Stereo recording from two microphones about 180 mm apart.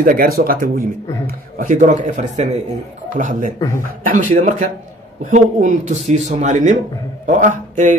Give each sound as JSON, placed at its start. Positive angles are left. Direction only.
{"t": 0.0, "sound": "a man's voice", "side_deg": -55}
{"t": 3.5, "sound": "speech", "side_deg": 15}
{"t": 4.0, "sound": "a man's voice", "side_deg": -50}